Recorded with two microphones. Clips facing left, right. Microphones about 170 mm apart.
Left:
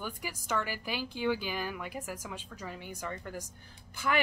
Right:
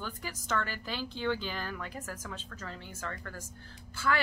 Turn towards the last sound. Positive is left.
turn(degrees=15)  # may be behind; listen again after turning